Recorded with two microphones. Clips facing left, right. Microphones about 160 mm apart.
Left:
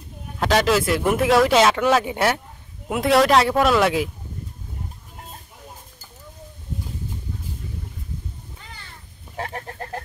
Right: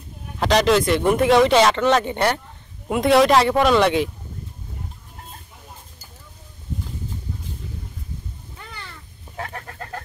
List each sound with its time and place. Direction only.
0.4 s speech: centre (ahead or behind)
8.5 s cat: 70° right (ahead or behind)
9.4 s chicken: 30° left (ahead or behind)